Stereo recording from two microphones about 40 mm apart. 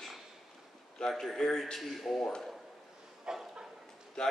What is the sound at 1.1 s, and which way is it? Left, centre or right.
A man's voice, centre.